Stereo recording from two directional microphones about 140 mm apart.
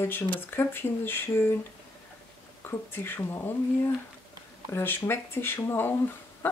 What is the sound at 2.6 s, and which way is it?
Speech, 15° left (ahead or behind).